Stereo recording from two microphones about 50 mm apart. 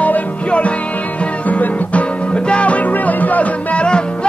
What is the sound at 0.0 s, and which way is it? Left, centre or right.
Music, left.